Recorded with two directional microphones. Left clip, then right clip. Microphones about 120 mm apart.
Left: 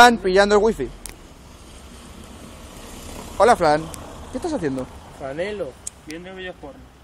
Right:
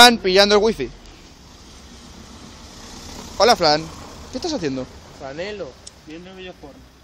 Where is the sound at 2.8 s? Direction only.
35° right (ahead or behind).